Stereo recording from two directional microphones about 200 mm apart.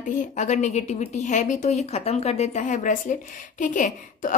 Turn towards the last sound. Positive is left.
turn(degrees=40)  # may be behind; listen again after turning